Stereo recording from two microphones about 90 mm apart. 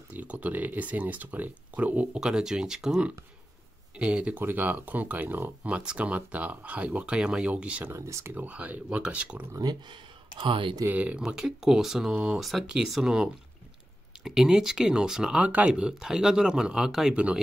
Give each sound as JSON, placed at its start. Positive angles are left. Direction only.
{"t": 0.1, "sound": "speech", "side_deg": -15}
{"t": 7.8, "sound": "speech", "side_deg": -35}
{"t": 8.4, "sound": "speech", "side_deg": -15}
{"t": 9.5, "sound": "speech", "side_deg": -50}
{"t": 10.4, "sound": "speech", "side_deg": -65}
{"t": 10.9, "sound": "speech", "side_deg": -15}